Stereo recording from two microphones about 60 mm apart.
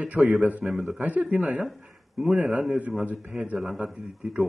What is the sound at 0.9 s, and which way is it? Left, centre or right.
Speech, right.